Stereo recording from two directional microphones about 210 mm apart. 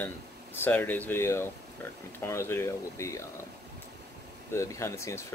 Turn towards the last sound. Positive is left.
turn(degrees=15)  # may be behind; listen again after turning